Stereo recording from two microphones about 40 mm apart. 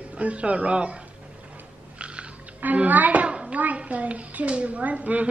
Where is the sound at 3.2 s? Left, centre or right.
Right.